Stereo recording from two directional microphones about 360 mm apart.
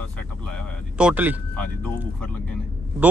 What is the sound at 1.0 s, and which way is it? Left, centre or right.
Speech, centre.